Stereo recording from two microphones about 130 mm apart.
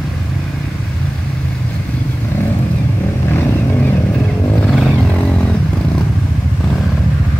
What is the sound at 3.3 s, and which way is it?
Vehicle, 15° left (ahead or behind).